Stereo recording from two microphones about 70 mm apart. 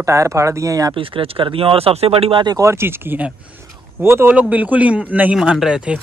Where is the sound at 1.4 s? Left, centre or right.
Right.